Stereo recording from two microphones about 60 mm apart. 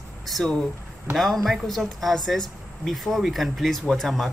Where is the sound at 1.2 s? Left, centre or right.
Centre.